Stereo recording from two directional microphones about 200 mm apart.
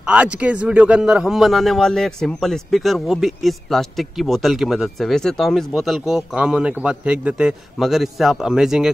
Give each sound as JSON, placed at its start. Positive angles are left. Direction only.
{"t": 0.0, "sound": "speech", "side_deg": -5}